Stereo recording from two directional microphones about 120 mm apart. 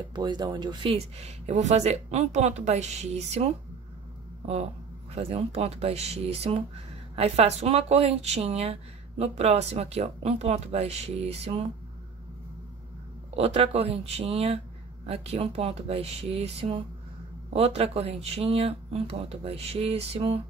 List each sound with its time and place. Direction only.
0.1 s speech: 35° right (ahead or behind)
0.8 s speech: 60° right (ahead or behind)
5.1 s speech: 55° right (ahead or behind)
13.4 s speech: 55° right (ahead or behind)